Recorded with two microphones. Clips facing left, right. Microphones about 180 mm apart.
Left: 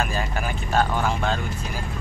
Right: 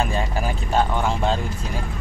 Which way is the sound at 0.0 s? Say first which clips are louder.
Right 3 dB; 25° right (ahead or behind).